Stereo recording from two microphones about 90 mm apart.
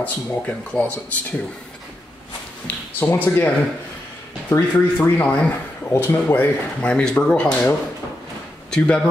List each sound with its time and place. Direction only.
0.0 s speech: 15° left (ahead or behind)
2.6 s speech: 20° left (ahead or behind)